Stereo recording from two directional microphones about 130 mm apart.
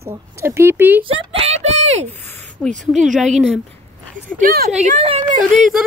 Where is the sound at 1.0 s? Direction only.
55° right (ahead or behind).